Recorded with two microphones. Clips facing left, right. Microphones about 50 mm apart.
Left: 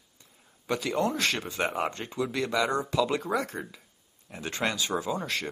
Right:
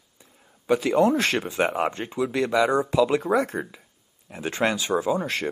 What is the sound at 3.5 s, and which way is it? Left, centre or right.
Speech, right.